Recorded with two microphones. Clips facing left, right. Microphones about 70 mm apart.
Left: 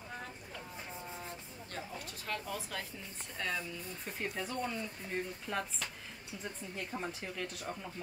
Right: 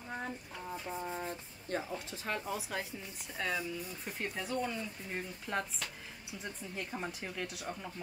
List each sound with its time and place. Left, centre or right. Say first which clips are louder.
1.1 s speech: right 5 dB; right
3.3 s speech: right 2 dB; centre